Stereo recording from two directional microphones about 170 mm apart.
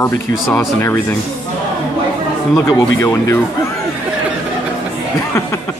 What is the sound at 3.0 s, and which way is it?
Speech, 15° left (ahead or behind).